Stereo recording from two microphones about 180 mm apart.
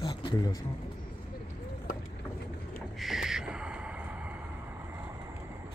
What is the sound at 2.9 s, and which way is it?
Gasp, centre (ahead or behind).